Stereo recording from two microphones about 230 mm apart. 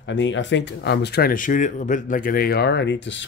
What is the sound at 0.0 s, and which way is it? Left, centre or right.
Speech, left.